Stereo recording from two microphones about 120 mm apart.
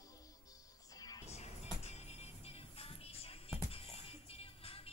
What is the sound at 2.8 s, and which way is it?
Music, 55° left (ahead or behind).